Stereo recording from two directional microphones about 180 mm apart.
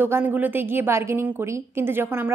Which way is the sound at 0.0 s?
10° right (ahead or behind).